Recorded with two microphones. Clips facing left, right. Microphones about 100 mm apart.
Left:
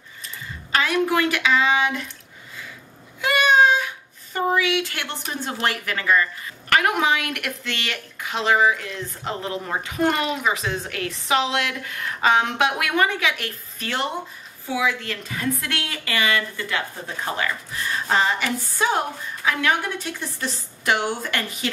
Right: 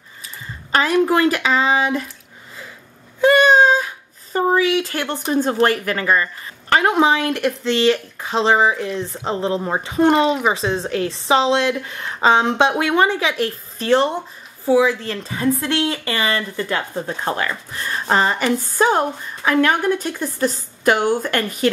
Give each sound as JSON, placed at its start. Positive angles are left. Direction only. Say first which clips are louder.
{"t": 0.7, "sound": "speech", "louder": "right 5 dB", "side_deg": -35}
{"t": 3.2, "sound": "a sound", "louder": "right 5 dB", "side_deg": -35}
{"t": 6.7, "sound": "speech", "louder": "right 5 dB", "side_deg": -30}
{"t": 17.2, "sound": "a woman's voice", "louder": "right 1 dB", "side_deg": -45}